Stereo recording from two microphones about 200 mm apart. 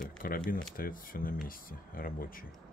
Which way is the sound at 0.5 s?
45° left (ahead or behind).